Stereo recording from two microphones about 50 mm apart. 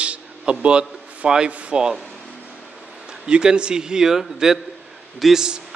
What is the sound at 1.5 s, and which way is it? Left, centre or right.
Speech, right.